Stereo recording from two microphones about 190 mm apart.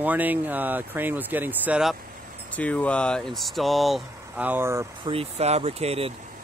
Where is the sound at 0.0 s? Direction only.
10° right (ahead or behind).